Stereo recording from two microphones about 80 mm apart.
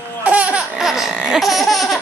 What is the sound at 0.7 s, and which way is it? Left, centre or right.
Laughter, centre.